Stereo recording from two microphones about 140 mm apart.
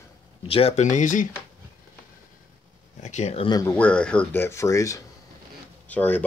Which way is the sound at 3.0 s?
55° left (ahead or behind).